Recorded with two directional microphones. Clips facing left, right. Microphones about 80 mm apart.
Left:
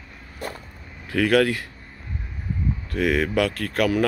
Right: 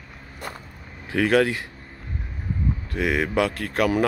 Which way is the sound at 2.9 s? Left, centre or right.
Right.